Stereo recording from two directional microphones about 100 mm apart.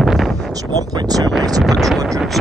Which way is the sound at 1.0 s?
40° right (ahead or behind).